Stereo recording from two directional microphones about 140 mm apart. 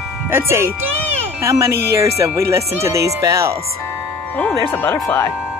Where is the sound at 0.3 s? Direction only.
15° right (ahead or behind).